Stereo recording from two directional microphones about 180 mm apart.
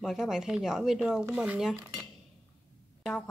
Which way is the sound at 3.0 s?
5° left (ahead or behind).